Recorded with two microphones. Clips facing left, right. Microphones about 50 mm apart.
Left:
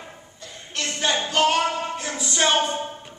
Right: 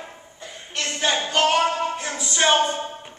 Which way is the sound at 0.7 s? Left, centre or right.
Centre.